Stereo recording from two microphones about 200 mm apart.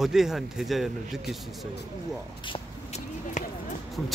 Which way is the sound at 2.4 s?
35° left (ahead or behind).